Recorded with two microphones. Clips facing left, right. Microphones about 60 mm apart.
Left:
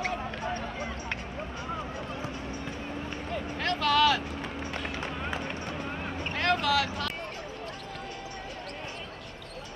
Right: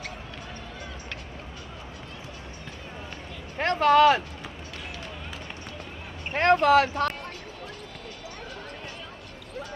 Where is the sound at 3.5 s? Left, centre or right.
Right.